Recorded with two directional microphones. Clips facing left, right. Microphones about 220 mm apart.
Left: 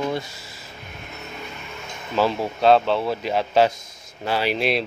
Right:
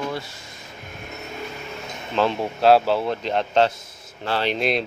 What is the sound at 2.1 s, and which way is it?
Speech, 5° left (ahead or behind).